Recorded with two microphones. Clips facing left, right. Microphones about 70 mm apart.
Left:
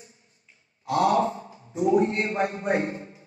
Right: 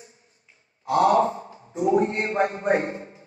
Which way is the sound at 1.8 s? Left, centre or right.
Right.